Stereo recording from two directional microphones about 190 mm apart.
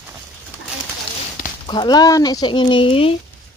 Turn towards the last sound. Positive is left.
turn(degrees=30)  # may be behind; listen again after turning